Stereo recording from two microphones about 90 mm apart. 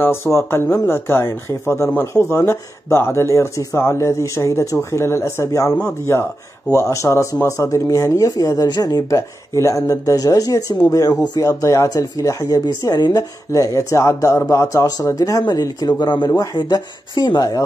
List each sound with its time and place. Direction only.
0.0 s speech: 30° left (ahead or behind)
2.0 s speech: 25° left (ahead or behind); by 17.6 s 50° left (ahead or behind)